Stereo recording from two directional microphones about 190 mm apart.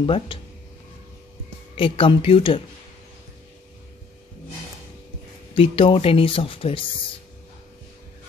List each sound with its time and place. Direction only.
0.0 s speech: 25° left (ahead or behind)
1.8 s speech: 30° left (ahead or behind)
5.5 s speech: 30° left (ahead or behind)